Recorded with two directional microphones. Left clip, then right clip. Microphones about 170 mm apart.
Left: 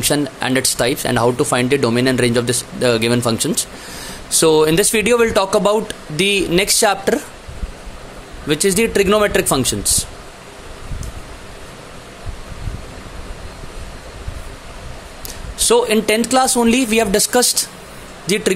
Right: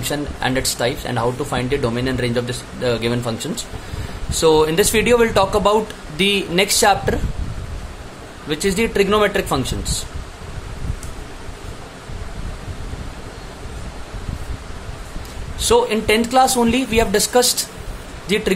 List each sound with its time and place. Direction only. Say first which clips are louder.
0.1 s speech: even; 30° left (ahead or behind)
8.5 s speech: left 4 dB; 25° left (ahead or behind)
15.6 s speech: left 2 dB; 30° left (ahead or behind)